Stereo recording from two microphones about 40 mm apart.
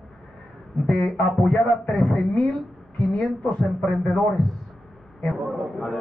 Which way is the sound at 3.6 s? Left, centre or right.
Centre.